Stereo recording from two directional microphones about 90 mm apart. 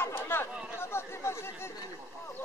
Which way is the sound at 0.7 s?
30° left (ahead or behind).